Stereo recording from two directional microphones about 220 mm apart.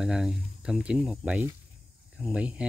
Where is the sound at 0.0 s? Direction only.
5° right (ahead or behind).